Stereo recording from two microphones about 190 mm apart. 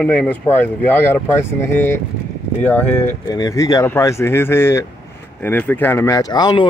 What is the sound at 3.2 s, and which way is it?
Speech, 20° left (ahead or behind).